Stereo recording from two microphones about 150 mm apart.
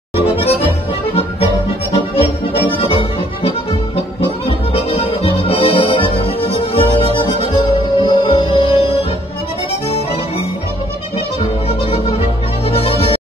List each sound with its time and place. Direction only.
0.2 s accordion: 40° left (ahead or behind)
2.1 s music: 40° left (ahead or behind)
11.8 s music: 40° left (ahead or behind)